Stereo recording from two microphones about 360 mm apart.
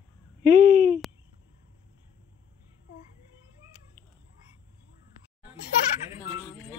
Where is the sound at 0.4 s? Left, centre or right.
Centre.